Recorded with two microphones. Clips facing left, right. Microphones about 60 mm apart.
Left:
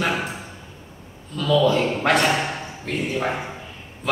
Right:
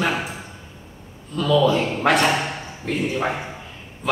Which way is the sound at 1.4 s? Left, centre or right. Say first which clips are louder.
Right 1 dB; centre.